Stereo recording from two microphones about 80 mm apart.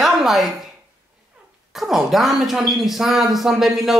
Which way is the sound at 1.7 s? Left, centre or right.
Centre.